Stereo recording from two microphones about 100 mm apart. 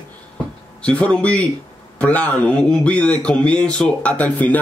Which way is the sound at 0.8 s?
10° left (ahead or behind).